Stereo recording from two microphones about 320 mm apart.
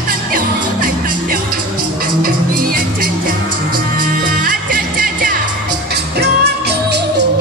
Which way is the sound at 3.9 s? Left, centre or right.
Right.